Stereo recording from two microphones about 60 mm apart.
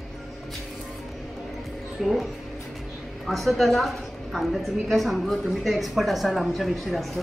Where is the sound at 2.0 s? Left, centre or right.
Centre.